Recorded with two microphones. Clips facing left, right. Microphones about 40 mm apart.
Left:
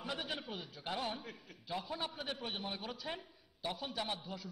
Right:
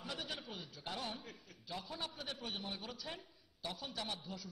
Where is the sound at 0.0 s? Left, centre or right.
Left.